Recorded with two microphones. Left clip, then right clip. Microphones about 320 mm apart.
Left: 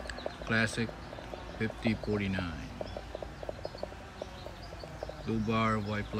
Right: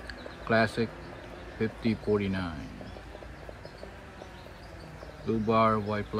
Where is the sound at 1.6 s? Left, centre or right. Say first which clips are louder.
Right 3 dB; centre.